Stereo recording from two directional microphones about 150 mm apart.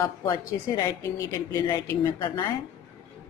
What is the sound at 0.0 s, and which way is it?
A woman's voice, 20° left (ahead or behind).